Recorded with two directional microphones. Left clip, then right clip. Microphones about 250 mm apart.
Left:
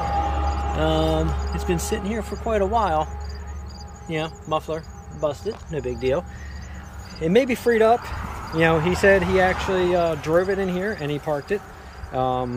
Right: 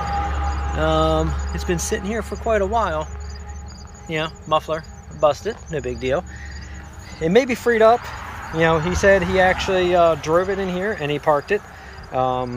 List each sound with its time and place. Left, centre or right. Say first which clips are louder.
0.0 s a sound: even; left
0.7 s speech: right 4 dB; centre
4.1 s speech: right 4 dB; centre